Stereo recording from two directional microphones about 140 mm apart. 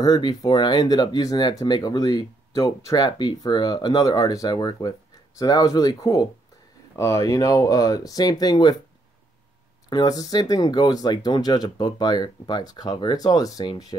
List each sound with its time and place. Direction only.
0.0 s speech: 30° left (ahead or behind)
9.8 s speech: 30° left (ahead or behind)